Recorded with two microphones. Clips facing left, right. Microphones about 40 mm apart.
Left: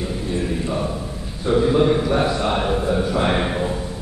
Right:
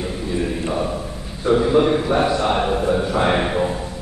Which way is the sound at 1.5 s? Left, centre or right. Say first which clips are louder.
Right 1 dB; centre.